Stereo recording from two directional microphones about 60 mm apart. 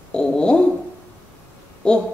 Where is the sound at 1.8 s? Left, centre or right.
Centre.